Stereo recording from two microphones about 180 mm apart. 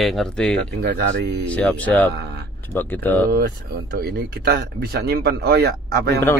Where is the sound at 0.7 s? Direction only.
65° right (ahead or behind).